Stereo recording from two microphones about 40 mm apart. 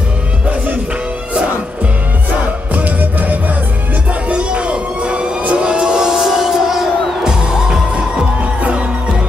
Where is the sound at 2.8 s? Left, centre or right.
Right.